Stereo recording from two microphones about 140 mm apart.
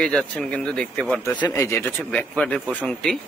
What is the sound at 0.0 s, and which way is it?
Speech, 5° left (ahead or behind).